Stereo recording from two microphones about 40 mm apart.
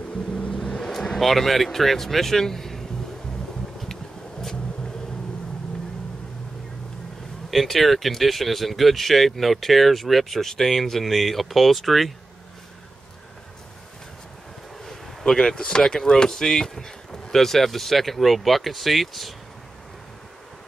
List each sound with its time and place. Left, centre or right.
0.5 s vehicle: centre
1.3 s speech: centre
3.9 s a sound: centre
7.5 s speech: centre
14.9 s speech: centre